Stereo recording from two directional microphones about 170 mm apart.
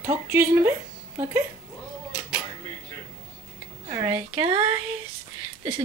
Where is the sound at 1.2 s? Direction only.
10° right (ahead or behind).